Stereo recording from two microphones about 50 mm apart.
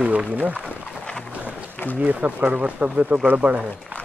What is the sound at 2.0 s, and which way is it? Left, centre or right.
Speech, right.